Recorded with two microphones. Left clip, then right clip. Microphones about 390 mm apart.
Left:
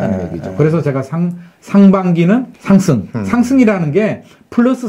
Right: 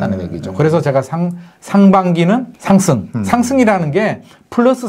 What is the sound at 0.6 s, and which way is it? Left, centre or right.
Speech, right.